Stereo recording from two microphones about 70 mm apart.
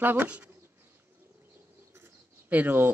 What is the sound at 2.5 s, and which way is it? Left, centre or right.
Speech, right.